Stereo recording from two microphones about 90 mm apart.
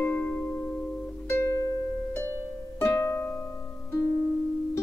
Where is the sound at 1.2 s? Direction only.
35° left (ahead or behind).